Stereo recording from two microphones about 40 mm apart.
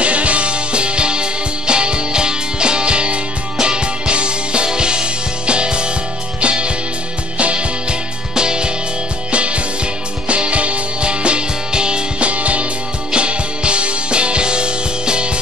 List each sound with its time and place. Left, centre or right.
0.0 s music: right